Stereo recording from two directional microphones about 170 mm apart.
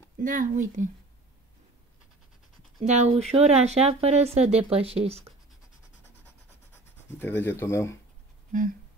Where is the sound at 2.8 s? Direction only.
40° right (ahead or behind).